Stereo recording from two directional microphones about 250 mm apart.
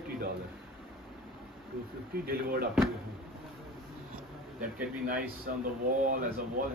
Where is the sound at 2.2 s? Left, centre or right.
Right.